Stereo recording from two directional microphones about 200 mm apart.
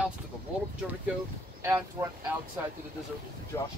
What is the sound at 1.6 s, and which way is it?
Speech, 10° right (ahead or behind).